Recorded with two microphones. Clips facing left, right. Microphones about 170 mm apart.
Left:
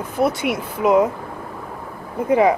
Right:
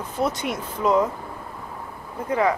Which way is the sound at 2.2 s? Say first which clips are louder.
Left 6 dB; 20° left (ahead or behind).